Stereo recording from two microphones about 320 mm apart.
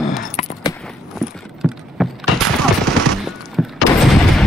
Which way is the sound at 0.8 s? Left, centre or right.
Centre.